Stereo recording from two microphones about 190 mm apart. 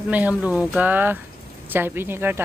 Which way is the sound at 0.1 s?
10° right (ahead or behind).